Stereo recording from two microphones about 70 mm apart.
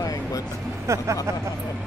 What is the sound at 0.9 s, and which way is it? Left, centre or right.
Speech, right.